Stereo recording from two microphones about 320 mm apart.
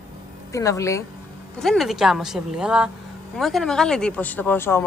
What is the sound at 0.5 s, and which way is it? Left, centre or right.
A woman's voice, centre.